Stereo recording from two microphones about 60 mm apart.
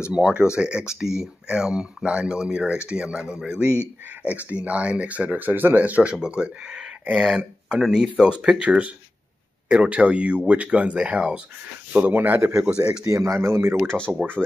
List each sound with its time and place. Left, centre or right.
0.1 s speech: centre
4.2 s speech: right
11.9 s speech: right
12.4 s speech: right
13.0 s speech: right